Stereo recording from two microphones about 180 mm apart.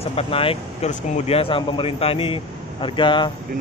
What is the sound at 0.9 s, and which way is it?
Speech, 40° left (ahead or behind).